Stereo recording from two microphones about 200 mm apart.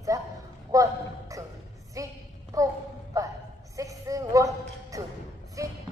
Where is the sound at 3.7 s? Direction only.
15° right (ahead or behind).